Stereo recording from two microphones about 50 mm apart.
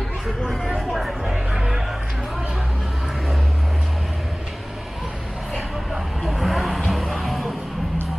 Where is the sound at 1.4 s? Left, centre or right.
Centre.